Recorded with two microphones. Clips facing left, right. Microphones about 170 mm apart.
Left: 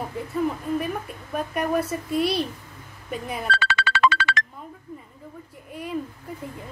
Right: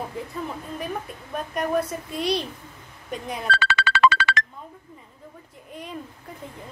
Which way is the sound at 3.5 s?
90° right.